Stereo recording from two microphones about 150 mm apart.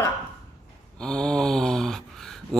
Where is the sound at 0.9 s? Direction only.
5° left (ahead or behind).